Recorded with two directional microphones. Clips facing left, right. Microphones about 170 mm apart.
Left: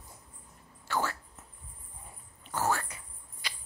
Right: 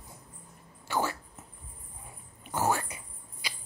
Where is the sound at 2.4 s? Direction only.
15° right (ahead or behind).